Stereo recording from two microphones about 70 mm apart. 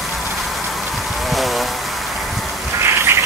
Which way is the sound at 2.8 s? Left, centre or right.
Right.